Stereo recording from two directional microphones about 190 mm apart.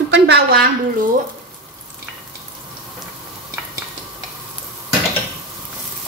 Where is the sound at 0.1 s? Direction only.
60° right (ahead or behind).